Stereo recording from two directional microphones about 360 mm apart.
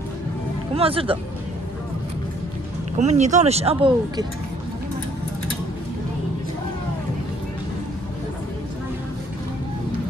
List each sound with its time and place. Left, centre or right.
0.7 s speech: centre
3.0 s speech: centre